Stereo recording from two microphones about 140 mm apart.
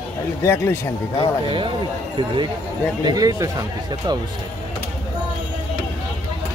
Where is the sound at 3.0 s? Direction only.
25° right (ahead or behind).